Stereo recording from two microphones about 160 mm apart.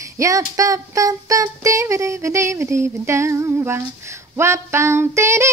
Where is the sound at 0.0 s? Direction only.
20° right (ahead or behind).